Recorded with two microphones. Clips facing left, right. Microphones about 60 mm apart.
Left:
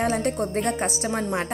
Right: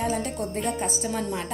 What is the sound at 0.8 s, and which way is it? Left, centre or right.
Speech, left.